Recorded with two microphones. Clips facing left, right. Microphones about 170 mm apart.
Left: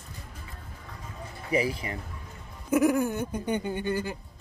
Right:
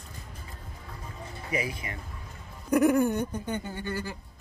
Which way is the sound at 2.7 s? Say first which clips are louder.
Right 1 dB; centre (ahead or behind).